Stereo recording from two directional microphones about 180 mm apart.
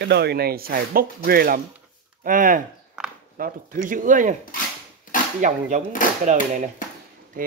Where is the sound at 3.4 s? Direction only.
50° right (ahead or behind).